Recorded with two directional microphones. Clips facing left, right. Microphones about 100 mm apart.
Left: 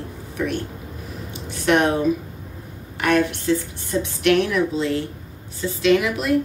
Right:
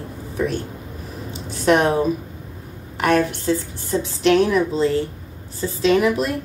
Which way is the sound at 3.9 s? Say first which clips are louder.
Right 1 dB; 35° right (ahead or behind).